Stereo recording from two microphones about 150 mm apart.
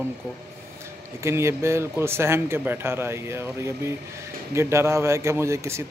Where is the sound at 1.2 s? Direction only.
20° right (ahead or behind).